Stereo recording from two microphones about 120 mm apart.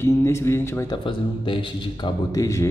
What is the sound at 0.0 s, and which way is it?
Speech, 20° left (ahead or behind).